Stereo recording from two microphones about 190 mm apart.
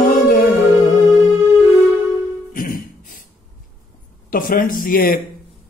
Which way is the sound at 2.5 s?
45° left (ahead or behind).